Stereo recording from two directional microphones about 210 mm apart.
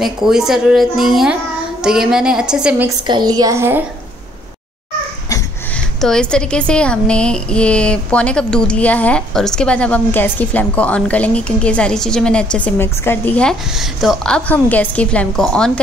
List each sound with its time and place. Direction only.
0.0 s a woman's voice: centre (ahead or behind)
3.0 s a woman's voice: 20° right (ahead or behind)
5.9 s a woman's voice: centre (ahead or behind)